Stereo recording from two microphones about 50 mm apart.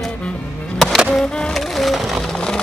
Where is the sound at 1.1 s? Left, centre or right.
Centre.